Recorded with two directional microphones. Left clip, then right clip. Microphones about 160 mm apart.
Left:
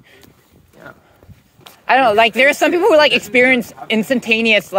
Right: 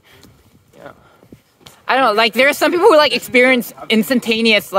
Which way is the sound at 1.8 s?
25° right (ahead or behind).